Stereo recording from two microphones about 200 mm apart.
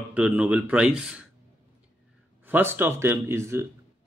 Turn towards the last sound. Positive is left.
turn(degrees=-15)  # may be behind; listen again after turning